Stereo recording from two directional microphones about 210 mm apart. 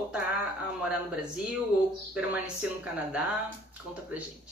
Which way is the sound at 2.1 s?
5° right (ahead or behind).